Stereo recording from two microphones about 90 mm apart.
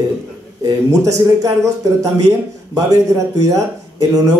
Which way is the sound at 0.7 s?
40° right (ahead or behind).